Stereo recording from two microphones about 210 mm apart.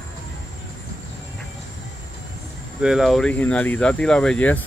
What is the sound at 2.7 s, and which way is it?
Speech, 5° right (ahead or behind).